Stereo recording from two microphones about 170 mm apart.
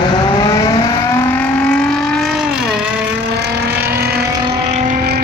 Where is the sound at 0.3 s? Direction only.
25° left (ahead or behind); by 2.9 s 5° right (ahead or behind).